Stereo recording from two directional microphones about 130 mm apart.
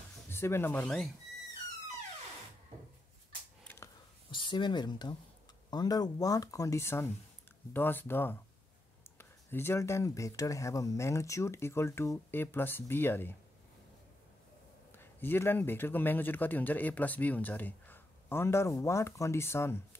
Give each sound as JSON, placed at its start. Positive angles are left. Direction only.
{"t": 0.3, "sound": "speech", "side_deg": 20}
{"t": 0.8, "sound": "speech", "side_deg": 0}
{"t": 3.6, "sound": "a sound", "side_deg": 20}
{"t": 4.3, "sound": "a man's voice", "side_deg": 40}
{"t": 14.9, "sound": "a man's voice", "side_deg": 15}